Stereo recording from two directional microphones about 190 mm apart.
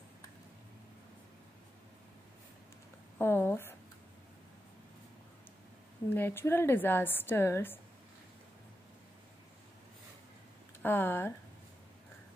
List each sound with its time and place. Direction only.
3.2 s a woman's voice: 10° left (ahead or behind)
6.1 s a woman's voice: 10° left (ahead or behind)
10.8 s a woman's voice: 10° left (ahead or behind)